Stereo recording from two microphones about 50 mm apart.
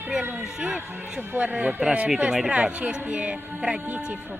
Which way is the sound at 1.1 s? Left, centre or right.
Right.